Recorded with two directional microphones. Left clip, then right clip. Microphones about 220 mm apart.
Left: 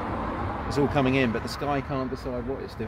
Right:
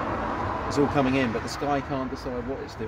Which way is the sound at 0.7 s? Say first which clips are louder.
Even; 40° left (ahead or behind).